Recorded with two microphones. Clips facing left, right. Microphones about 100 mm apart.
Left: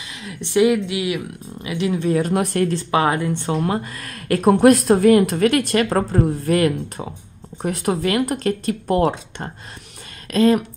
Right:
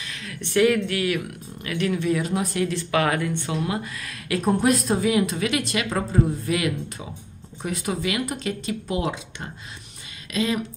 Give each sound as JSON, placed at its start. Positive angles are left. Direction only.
{"t": 0.2, "sound": "speech", "side_deg": 25}
{"t": 2.3, "sound": "a woman's voice", "side_deg": 55}
{"t": 2.9, "sound": "speech", "side_deg": 25}
{"t": 3.4, "sound": "a woman's voice", "side_deg": 45}
{"t": 4.5, "sound": "a woman's voice", "side_deg": 65}